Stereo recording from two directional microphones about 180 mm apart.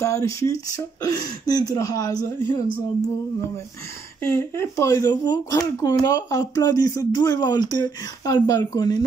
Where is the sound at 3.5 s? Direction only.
15° left (ahead or behind).